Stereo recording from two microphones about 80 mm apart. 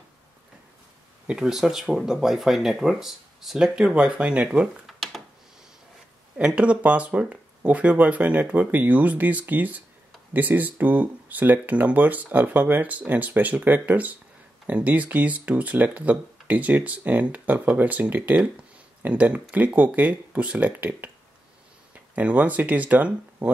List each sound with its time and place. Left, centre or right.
1.2 s speech: centre
4.8 s a sound: centre
6.3 s speech: centre